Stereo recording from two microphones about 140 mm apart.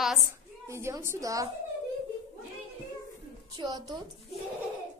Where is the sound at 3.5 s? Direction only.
30° right (ahead or behind).